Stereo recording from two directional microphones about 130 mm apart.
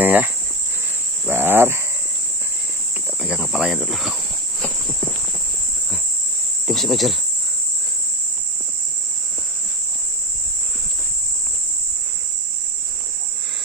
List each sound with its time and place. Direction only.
0.0 s speech: 15° right (ahead or behind)
1.2 s a sound: 15° right (ahead or behind)
3.2 s speech: 5° right (ahead or behind)
6.7 s speech: centre (ahead or behind)